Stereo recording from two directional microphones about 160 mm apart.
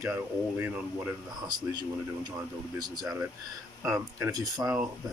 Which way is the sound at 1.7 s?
25° right (ahead or behind).